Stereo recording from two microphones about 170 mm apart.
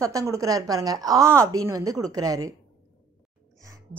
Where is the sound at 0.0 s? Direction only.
20° right (ahead or behind).